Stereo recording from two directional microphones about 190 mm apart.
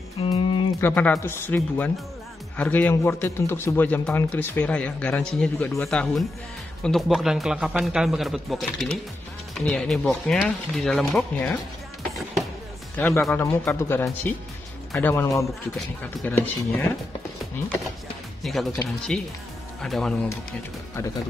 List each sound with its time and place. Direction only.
0.2 s music: 25° left (ahead or behind)
0.7 s speech: 10° left (ahead or behind)
12.9 s speech: 5° left (ahead or behind)
18.4 s speech: centre (ahead or behind)